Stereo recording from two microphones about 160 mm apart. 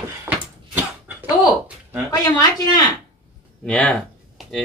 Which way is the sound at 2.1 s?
25° left (ahead or behind).